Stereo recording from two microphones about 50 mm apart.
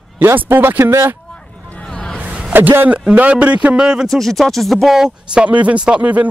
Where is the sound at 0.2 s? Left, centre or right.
Right.